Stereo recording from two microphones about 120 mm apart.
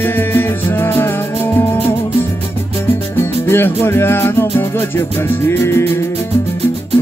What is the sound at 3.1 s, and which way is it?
Music, 20° left (ahead or behind).